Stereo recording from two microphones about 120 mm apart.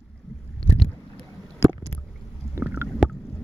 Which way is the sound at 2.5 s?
20° right (ahead or behind).